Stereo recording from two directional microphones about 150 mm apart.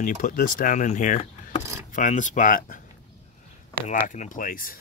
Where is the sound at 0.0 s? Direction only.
65° left (ahead or behind).